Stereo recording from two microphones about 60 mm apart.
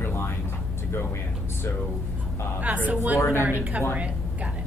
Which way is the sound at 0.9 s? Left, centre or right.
Left.